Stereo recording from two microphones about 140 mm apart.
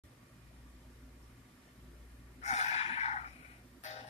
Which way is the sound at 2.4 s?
50° left (ahead or behind).